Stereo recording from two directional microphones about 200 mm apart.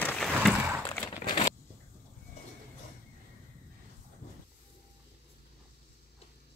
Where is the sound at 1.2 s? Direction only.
30° left (ahead or behind).